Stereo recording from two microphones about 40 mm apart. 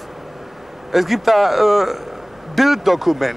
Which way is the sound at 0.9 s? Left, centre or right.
Centre.